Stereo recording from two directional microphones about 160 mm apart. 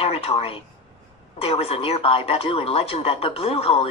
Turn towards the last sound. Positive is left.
turn(degrees=35)  # may be behind; listen again after turning